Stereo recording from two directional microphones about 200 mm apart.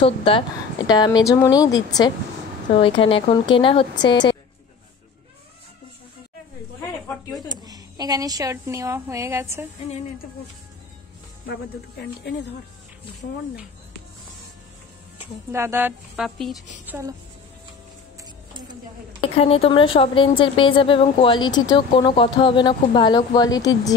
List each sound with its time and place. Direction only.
0.0 s a woman's voice: 25° left (ahead or behind)
7.4 s a woman's voice: 20° right (ahead or behind)
15.5 s speech: 10° right (ahead or behind)
16.3 s speech: centre (ahead or behind)
16.8 s speech: 10° right (ahead or behind)
19.3 s a woman's voice: 30° left (ahead or behind)